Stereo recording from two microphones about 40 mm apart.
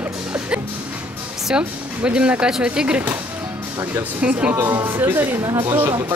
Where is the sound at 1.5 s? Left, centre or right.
Right.